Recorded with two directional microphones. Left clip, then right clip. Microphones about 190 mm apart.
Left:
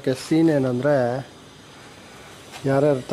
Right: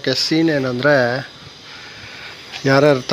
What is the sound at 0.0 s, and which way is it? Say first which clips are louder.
Speech: right 3 dB; 10° left (ahead or behind).